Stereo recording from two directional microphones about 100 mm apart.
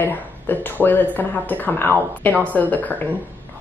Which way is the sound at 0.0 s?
20° left (ahead or behind).